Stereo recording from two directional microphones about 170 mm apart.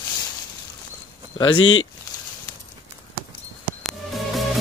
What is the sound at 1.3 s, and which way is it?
Speech, 30° left (ahead or behind).